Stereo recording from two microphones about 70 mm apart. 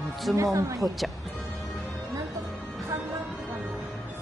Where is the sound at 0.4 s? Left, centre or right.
Right.